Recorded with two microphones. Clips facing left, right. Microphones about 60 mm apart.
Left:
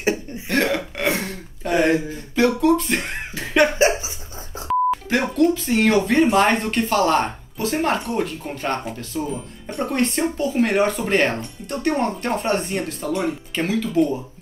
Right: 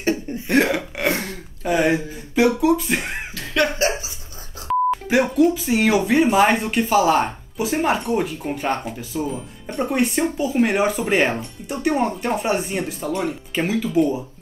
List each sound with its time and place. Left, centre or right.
0.5 s throat clearing: centre
2.6 s speech: centre
3.3 s a sound: centre
4.6 s speech: centre
13.6 s speech: centre